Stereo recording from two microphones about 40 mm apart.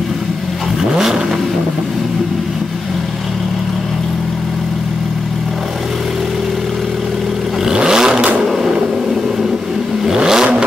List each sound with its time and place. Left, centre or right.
7.6 s vehicle: centre
10.0 s vehicle: centre